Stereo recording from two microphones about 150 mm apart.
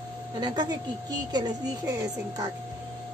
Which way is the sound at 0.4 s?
30° right (ahead or behind).